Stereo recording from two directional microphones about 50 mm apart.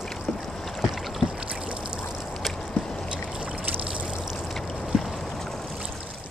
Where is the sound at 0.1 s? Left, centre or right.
Centre.